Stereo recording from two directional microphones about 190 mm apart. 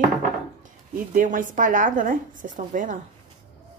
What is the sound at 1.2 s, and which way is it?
Speech, 45° right (ahead or behind).